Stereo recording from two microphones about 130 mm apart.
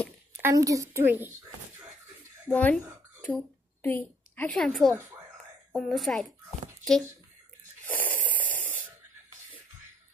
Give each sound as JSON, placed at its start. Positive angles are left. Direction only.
{"t": 0.4, "sound": "a woman's voice", "side_deg": -25}
{"t": 2.4, "sound": "a sound", "side_deg": 10}
{"t": 4.6, "sound": "a woman's voice", "side_deg": 5}
{"t": 7.8, "sound": "snoring", "side_deg": 15}